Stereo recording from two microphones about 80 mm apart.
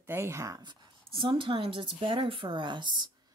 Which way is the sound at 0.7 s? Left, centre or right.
Right.